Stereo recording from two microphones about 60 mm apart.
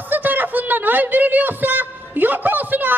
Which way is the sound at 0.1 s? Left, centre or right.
Right.